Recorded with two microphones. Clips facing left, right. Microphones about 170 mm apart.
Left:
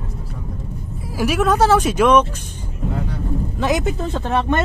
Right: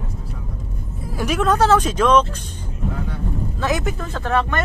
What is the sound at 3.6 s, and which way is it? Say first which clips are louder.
Speech: left 3 dB; 15° left (ahead or behind).